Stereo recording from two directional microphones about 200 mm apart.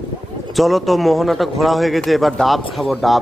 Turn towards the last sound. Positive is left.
turn(degrees=0)  # may be behind; listen again after turning